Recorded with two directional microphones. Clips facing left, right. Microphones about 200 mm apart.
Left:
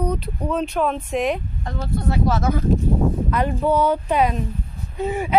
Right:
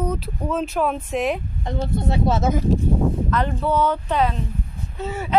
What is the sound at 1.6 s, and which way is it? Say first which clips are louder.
Speech: right 1 dB; 20° right (ahead or behind).